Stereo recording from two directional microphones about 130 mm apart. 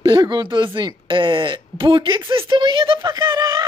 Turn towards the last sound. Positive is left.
turn(degrees=-35)  # may be behind; listen again after turning